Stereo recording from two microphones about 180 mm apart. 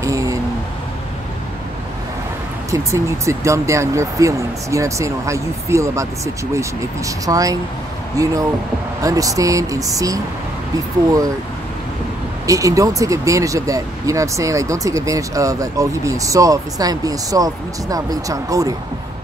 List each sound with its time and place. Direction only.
0.0 s a sound: 20° right (ahead or behind)
2.7 s speech: 15° right (ahead or behind)
12.4 s speech: 20° right (ahead or behind)